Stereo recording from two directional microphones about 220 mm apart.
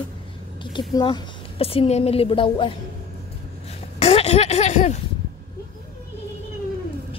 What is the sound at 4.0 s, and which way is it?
Speech, 25° left (ahead or behind).